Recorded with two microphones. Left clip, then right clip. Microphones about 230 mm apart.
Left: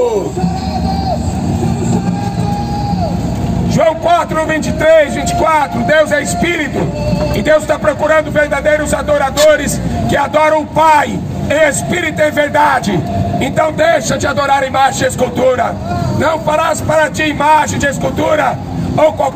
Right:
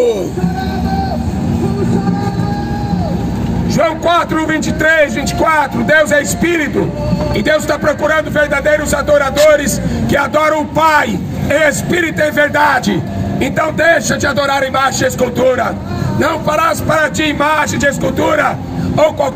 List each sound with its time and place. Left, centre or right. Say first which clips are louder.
3.7 s a man's voice: left 1 dB; right